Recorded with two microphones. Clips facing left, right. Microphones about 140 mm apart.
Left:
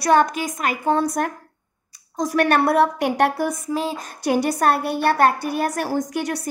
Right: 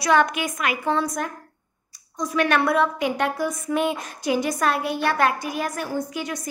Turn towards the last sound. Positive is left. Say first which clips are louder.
# left 4 dB
turn(degrees=70)  # may be behind; listen again after turning